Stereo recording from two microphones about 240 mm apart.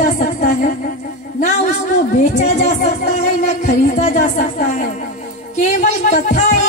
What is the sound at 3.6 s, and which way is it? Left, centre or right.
A man's voice, left.